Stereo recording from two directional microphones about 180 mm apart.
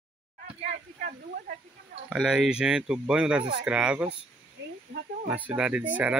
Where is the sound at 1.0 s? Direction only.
50° right (ahead or behind).